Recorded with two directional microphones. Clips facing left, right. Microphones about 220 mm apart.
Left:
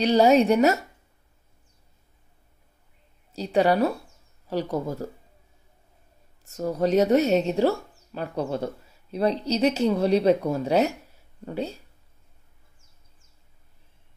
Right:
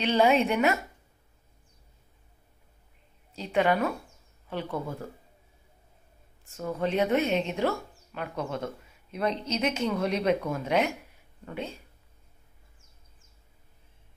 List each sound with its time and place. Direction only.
0.0 s speech: 40° left (ahead or behind)
3.3 s speech: 35° left (ahead or behind)
6.4 s speech: 40° left (ahead or behind)